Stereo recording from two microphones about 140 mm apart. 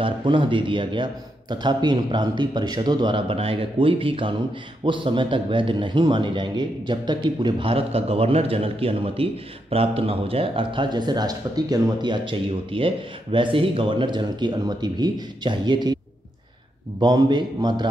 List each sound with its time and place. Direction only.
0.0 s a man's voice: 35° right (ahead or behind)
17.0 s a man's voice: 30° right (ahead or behind)